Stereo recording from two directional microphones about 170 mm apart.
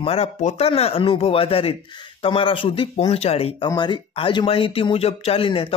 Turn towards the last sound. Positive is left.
turn(degrees=35)  # may be behind; listen again after turning